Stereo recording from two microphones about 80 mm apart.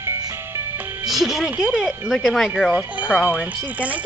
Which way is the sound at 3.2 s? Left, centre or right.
Centre.